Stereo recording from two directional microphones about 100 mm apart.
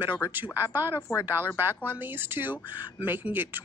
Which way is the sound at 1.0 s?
35° left (ahead or behind).